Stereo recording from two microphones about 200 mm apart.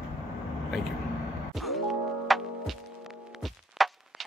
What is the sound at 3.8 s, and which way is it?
Walk, centre (ahead or behind).